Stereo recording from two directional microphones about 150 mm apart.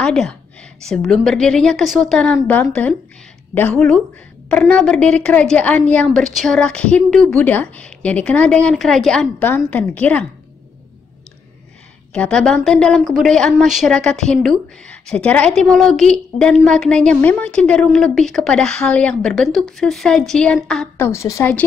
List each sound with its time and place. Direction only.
0.0 s a woman's voice: 5° left (ahead or behind)
4.5 s a woman's voice: 10° left (ahead or behind)
12.1 s a woman's voice: 5° left (ahead or behind)
21.0 s a woman's voice: 20° left (ahead or behind)